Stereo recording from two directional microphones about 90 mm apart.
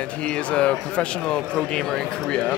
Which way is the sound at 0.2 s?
10° left (ahead or behind).